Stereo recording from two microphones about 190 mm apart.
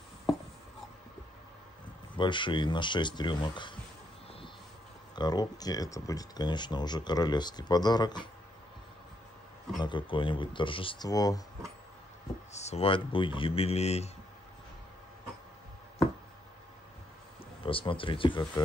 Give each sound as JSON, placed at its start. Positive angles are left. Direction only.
{"t": 2.1, "sound": "speech", "side_deg": 25}
{"t": 5.1, "sound": "speech", "side_deg": 20}
{"t": 9.8, "sound": "speech", "side_deg": 25}
{"t": 12.5, "sound": "a man's voice", "side_deg": 35}
{"t": 17.6, "sound": "speech", "side_deg": 30}